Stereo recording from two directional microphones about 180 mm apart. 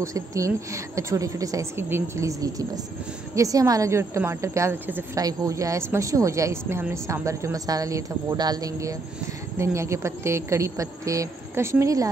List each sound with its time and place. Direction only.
0.0 s a woman's voice: 15° right (ahead or behind)